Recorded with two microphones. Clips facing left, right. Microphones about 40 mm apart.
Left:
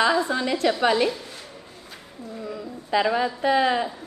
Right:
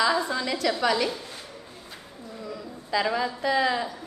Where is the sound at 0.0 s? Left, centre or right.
Left.